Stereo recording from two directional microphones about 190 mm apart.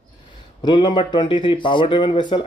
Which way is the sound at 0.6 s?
25° left (ahead or behind).